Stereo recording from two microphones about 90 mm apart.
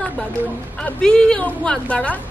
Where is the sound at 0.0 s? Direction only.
20° left (ahead or behind).